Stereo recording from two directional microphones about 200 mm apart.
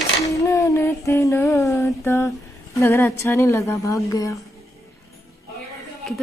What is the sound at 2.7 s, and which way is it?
A woman's voice, 15° left (ahead or behind).